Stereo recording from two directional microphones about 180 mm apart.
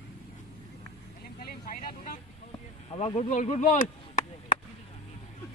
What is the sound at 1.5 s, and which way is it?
Speech, 50° left (ahead or behind).